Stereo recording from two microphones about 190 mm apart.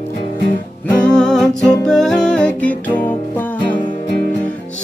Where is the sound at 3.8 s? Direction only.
25° left (ahead or behind).